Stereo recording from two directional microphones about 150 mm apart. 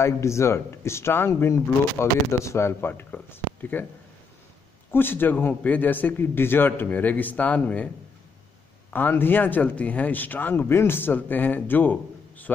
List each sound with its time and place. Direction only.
0.0 s speech: 20° left (ahead or behind)
4.9 s speech: 15° left (ahead or behind)
8.9 s speech: 15° left (ahead or behind)